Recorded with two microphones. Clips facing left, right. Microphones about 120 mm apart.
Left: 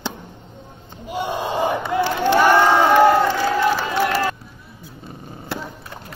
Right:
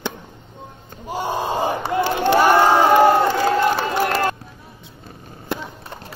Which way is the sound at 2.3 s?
30° right (ahead or behind).